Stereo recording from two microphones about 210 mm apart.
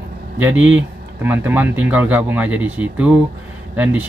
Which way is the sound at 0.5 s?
65° right (ahead or behind).